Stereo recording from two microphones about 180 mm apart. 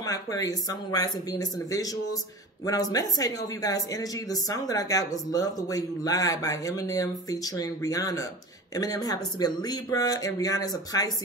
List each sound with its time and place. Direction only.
0.0 s speech: 20° left (ahead or behind)